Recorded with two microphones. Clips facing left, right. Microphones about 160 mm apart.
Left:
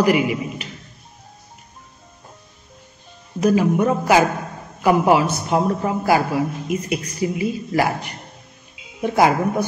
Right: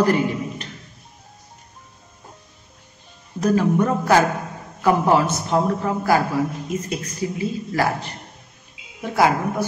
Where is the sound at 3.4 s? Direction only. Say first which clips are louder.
Left 2 dB; 10° left (ahead or behind).